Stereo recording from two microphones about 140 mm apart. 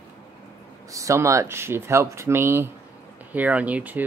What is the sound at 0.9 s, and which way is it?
Speech, 20° right (ahead or behind).